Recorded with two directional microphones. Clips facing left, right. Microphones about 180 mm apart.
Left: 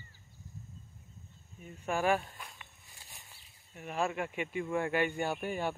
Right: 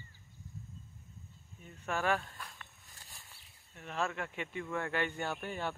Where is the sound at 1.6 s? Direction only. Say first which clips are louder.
Left 3 dB; 10° left (ahead or behind).